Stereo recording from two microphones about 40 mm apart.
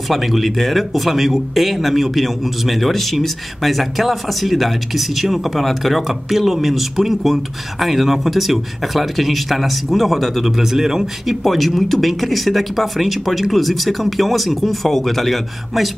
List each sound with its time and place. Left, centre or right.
0.1 s speech: centre
11.4 s speech: centre